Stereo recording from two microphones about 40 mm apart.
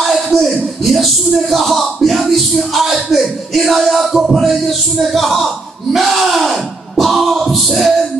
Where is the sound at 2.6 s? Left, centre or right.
Centre.